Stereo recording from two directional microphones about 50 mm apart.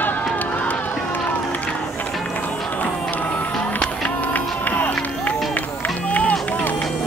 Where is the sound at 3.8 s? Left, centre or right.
Left.